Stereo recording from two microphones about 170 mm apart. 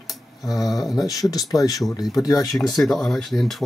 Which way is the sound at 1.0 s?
20° left (ahead or behind).